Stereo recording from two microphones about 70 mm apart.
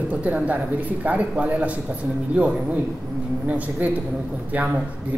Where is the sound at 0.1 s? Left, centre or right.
Right.